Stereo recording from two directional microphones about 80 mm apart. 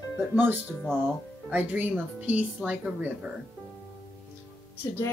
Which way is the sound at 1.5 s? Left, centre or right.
Right.